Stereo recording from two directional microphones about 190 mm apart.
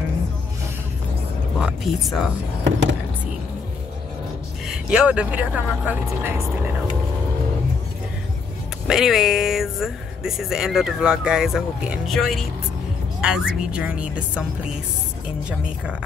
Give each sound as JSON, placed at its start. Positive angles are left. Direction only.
{"t": 1.6, "sound": "speech", "side_deg": 0}
{"t": 2.6, "sound": "a sound", "side_deg": -75}
{"t": 4.6, "sound": "speech", "side_deg": -5}
{"t": 8.8, "sound": "speech", "side_deg": 0}
{"t": 15.6, "sound": "speech", "side_deg": -5}